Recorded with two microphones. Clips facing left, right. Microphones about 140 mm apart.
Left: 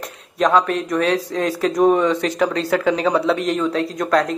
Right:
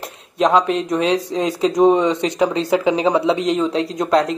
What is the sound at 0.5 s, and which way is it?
Speech, 25° right (ahead or behind).